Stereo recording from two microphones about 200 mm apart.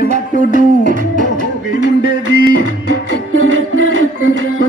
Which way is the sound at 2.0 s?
90° right.